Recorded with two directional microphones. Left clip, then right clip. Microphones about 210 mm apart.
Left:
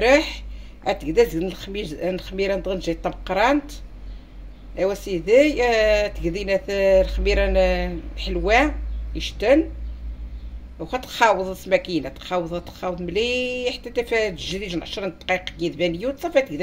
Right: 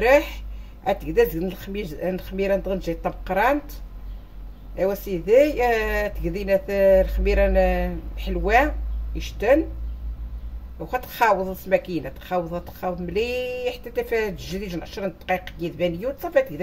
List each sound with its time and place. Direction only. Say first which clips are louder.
0.0 s speech: left 1 dB; 10° right (ahead or behind)
4.7 s speech: left 1 dB; 15° right (ahead or behind)
10.8 s speech: left 2 dB; 10° right (ahead or behind)